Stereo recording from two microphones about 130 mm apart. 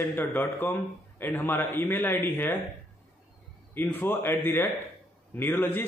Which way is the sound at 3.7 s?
15° left (ahead or behind).